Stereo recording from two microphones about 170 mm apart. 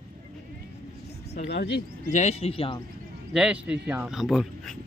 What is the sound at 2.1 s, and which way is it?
Speech, 40° left (ahead or behind).